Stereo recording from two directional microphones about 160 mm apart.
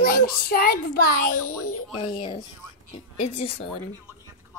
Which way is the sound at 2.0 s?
30° left (ahead or behind).